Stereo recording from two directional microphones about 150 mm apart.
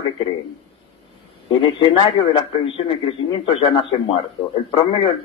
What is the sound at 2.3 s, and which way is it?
A man's voice, 35° left (ahead or behind).